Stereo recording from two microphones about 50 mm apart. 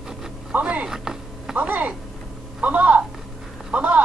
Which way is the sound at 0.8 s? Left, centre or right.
Centre.